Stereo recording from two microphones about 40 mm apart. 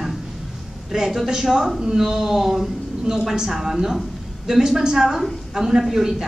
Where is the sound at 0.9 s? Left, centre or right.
Centre.